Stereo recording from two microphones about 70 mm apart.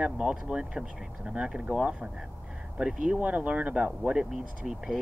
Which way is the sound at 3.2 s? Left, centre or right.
Right.